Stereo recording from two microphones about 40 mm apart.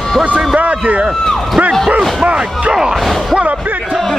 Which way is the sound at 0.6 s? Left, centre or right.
Right.